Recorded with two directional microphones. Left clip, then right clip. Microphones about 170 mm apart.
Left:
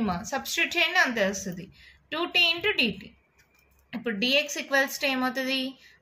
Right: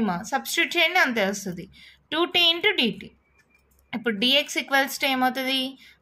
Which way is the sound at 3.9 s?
45° right (ahead or behind).